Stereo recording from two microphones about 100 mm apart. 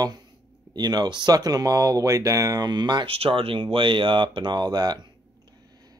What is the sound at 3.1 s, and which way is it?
Speech, 70° right (ahead or behind).